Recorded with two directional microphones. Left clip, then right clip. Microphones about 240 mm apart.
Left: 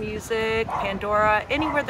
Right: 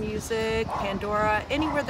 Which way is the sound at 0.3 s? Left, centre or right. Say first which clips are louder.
Left 4 dB; centre.